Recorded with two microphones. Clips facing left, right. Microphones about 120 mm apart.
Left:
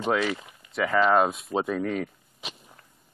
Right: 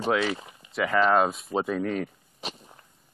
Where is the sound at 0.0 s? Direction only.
Centre (ahead or behind).